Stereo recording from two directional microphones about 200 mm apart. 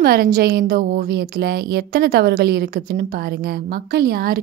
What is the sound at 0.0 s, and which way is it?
A woman's voice, 50° right (ahead or behind).